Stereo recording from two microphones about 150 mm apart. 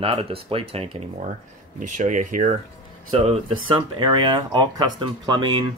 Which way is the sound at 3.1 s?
40° right (ahead or behind).